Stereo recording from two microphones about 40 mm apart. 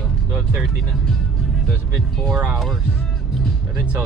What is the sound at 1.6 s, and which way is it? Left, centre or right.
Speech, centre.